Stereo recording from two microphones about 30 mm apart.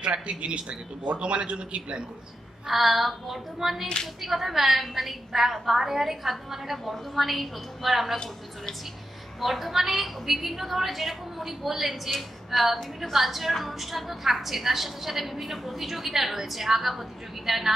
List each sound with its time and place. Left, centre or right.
0.0 s a man's voice: right
2.6 s a woman's voice: centre
9.4 s a woman's voice: centre